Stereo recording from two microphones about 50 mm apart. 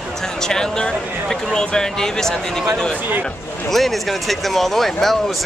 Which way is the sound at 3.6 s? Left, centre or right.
Centre.